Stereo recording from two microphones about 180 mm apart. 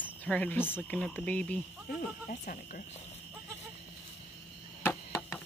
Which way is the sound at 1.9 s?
50° left (ahead or behind).